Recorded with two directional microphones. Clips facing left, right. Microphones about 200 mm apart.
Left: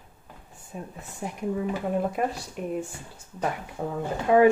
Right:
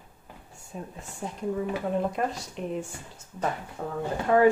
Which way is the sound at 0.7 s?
10° left (ahead or behind).